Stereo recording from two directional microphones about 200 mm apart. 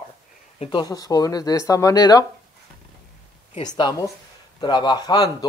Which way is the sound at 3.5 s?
25° left (ahead or behind).